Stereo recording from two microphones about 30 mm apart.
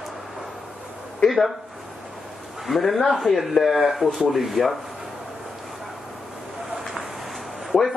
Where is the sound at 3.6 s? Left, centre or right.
Centre.